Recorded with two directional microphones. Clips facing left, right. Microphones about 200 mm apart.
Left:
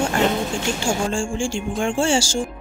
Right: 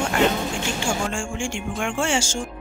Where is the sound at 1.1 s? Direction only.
35° left (ahead or behind).